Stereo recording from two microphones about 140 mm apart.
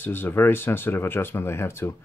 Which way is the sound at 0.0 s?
15° left (ahead or behind).